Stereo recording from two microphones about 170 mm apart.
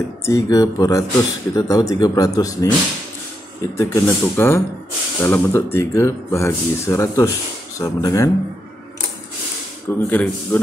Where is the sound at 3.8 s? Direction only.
15° left (ahead or behind).